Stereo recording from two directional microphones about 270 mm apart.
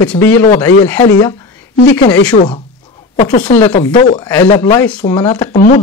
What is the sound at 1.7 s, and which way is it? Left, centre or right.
Speech, left.